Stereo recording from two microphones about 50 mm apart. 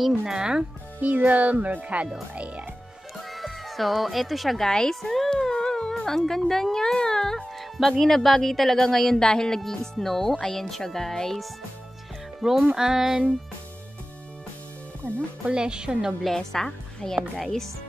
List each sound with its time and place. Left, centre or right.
0.2 s a woman's voice: centre
1.0 s speech: right
3.3 s speech: centre
4.6 s speech: centre
12.4 s a woman's voice: centre
15.4 s a woman's voice: centre
16.3 s speech: centre